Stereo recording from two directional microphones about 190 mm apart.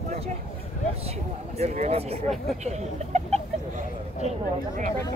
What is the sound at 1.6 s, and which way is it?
Speech, 35° right (ahead or behind).